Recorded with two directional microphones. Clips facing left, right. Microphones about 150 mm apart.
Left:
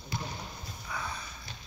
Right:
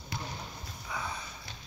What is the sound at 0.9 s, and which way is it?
Sniff, 15° right (ahead or behind).